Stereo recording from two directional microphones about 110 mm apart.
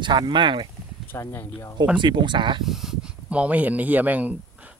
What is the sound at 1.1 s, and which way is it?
Speech, 20° left (ahead or behind).